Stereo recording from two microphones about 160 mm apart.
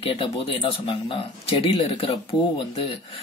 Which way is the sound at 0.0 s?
35° left (ahead or behind).